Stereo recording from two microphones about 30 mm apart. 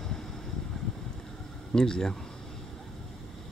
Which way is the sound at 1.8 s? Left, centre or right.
Left.